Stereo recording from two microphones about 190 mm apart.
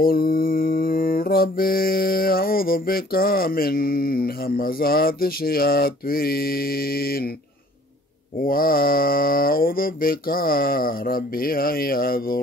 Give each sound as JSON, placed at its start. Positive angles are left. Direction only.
{"t": 0.0, "sound": "mantra", "side_deg": 50}
{"t": 8.4, "sound": "mantra", "side_deg": 50}